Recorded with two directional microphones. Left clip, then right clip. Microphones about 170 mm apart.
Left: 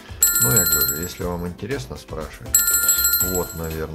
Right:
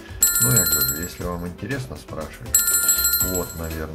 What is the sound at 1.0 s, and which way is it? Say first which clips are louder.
Speech: left 2 dB; 25° left (ahead or behind).